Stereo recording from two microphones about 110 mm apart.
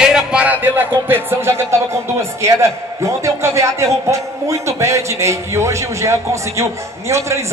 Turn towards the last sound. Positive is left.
turn(degrees=-25)  # may be behind; listen again after turning